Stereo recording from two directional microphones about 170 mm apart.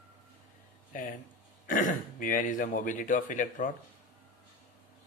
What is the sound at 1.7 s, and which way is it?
Speech, 50° left (ahead or behind).